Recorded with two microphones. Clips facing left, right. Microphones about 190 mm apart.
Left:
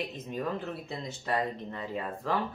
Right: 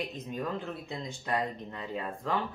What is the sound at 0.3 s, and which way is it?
Speech, 5° left (ahead or behind).